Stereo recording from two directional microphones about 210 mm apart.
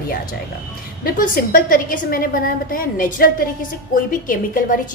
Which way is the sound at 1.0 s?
40° left (ahead or behind).